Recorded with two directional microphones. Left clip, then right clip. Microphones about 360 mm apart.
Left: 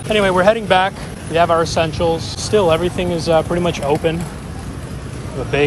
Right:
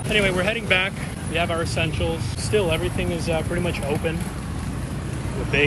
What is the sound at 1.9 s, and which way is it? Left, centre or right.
Speech, left.